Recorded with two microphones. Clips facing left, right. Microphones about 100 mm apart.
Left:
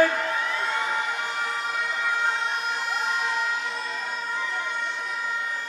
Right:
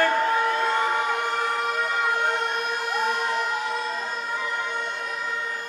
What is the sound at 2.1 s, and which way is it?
Emergency vehicle, 55° right (ahead or behind).